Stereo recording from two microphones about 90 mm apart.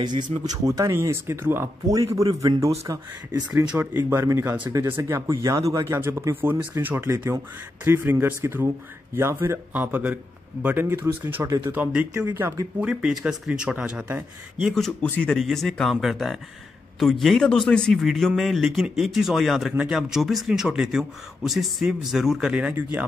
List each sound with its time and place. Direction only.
0.0 s speech: 55° right (ahead or behind)
0.7 s speech: 35° right (ahead or behind)
1.9 s speech: 40° right (ahead or behind)
3.7 s speech: 25° right (ahead or behind)
5.9 s speech: 25° right (ahead or behind)
9.7 s speech: 20° right (ahead or behind)
11.4 s speech: 35° right (ahead or behind)
11.7 s speech: 15° right (ahead or behind)
12.4 s speech: 30° right (ahead or behind)
12.8 s speech: 10° right (ahead or behind)
14.6 s a man's voice: centre (ahead or behind); by 23.0 s 20° right (ahead or behind)